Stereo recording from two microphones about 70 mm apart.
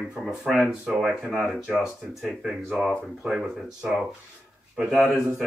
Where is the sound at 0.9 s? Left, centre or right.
Centre.